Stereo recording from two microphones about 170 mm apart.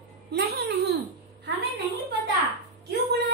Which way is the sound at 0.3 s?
75° right (ahead or behind).